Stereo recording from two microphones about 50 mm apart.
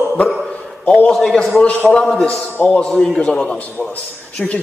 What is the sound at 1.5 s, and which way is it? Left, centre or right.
Speech, left.